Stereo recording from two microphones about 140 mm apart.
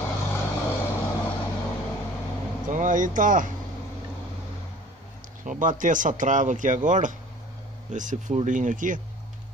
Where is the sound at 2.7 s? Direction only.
65° right (ahead or behind).